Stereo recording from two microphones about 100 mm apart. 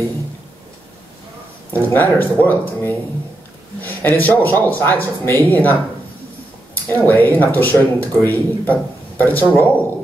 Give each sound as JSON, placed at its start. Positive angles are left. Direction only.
{"t": 1.7, "sound": "a man's voice", "side_deg": 15}